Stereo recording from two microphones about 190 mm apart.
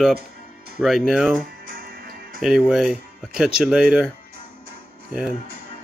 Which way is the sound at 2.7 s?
5° right (ahead or behind).